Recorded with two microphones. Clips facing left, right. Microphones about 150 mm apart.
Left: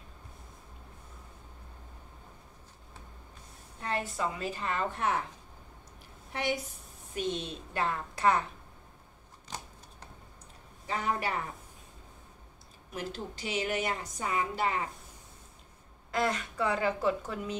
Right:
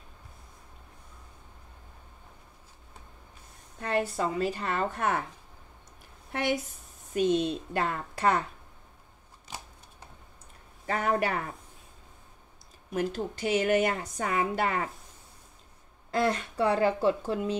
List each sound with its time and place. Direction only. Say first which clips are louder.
3.8 s a woman's voice: right 5 dB; 40° right (ahead or behind)
6.3 s a woman's voice: right 4 dB; 50° right (ahead or behind)
10.9 s a woman's voice: right 5 dB; 55° right (ahead or behind)
12.9 s a woman's voice: right 8 dB; 50° right (ahead or behind)
16.1 s a woman's voice: right 3 dB; 30° right (ahead or behind)